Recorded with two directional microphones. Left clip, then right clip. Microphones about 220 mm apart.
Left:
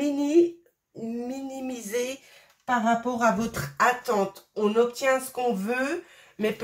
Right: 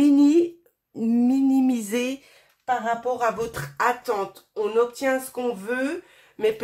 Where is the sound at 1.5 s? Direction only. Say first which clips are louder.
Right 8 dB; 45° right (ahead or behind).